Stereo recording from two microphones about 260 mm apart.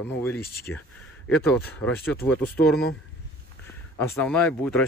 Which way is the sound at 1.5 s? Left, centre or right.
Centre.